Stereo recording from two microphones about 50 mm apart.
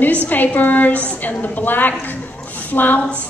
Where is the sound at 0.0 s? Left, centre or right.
Left.